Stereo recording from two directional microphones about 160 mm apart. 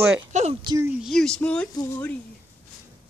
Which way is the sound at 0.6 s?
25° right (ahead or behind).